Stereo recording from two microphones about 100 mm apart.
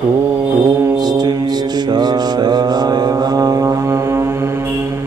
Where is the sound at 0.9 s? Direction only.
45° right (ahead or behind); by 4.7 s 25° right (ahead or behind).